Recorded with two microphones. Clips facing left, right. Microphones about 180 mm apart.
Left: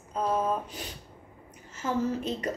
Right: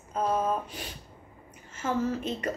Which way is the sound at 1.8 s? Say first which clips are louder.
Even; 35° left (ahead or behind).